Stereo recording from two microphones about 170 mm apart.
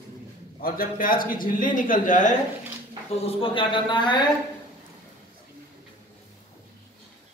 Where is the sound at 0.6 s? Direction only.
60° left (ahead or behind).